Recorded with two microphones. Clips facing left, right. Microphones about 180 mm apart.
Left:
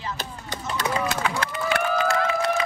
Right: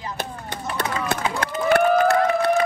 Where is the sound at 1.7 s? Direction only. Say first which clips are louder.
Right 7 dB; 55° right (ahead or behind).